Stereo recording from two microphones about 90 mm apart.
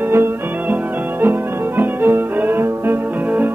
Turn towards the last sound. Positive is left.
turn(degrees=-20)  # may be behind; listen again after turning